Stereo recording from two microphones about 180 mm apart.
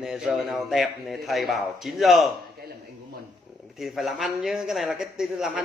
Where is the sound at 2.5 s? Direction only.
60° right (ahead or behind).